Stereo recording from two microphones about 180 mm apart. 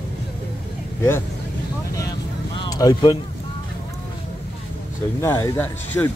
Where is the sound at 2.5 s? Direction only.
20° left (ahead or behind).